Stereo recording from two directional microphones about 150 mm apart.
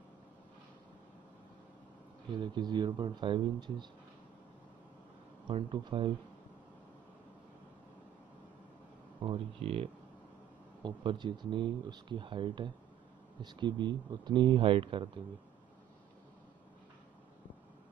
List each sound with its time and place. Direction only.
2.3 s speech: 30° right (ahead or behind)
5.5 s speech: 35° right (ahead or behind)
9.2 s speech: 40° right (ahead or behind)